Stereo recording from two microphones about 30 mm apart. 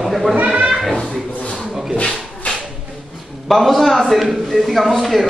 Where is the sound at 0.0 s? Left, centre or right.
Centre.